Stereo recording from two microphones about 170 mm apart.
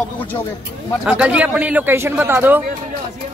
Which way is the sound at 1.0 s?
5° right (ahead or behind).